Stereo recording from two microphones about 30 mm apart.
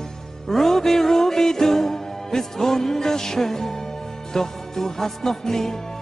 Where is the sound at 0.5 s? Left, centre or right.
Centre.